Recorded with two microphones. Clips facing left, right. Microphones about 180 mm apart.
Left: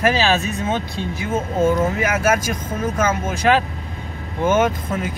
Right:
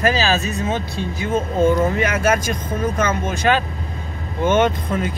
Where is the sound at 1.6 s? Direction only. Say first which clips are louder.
Right 1 dB; 5° left (ahead or behind).